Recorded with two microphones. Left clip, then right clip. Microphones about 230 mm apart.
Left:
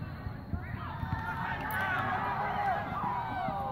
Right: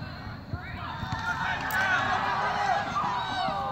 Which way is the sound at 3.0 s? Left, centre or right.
Right.